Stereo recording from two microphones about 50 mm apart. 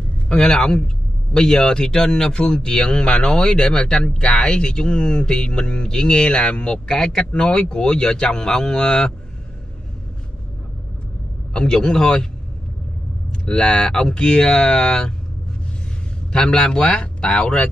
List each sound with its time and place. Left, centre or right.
0.3 s speech: centre
11.5 s speech: centre
13.3 s speech: centre
16.3 s speech: centre